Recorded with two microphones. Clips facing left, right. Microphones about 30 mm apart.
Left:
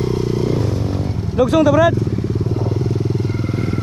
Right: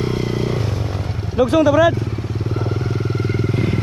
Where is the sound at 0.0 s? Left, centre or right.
Right.